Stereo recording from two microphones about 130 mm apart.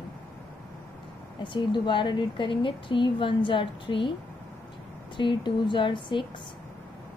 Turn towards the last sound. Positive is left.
turn(degrees=40)  # may be behind; listen again after turning